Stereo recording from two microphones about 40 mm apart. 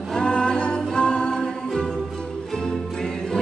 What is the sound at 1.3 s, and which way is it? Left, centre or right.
Music, centre.